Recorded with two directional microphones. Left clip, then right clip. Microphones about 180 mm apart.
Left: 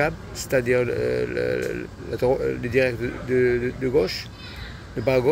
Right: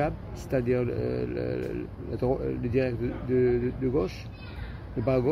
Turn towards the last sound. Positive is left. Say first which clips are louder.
# left 6 dB
turn(degrees=5)  # may be behind; listen again after turning